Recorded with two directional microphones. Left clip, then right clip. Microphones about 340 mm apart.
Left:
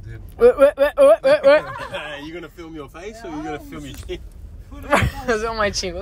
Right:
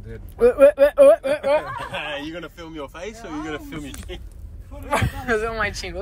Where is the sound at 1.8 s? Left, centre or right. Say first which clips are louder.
Right 1 dB; centre.